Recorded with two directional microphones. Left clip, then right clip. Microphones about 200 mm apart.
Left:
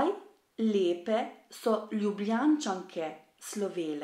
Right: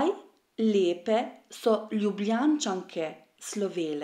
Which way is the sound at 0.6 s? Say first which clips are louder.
Right 3 dB; 40° right (ahead or behind).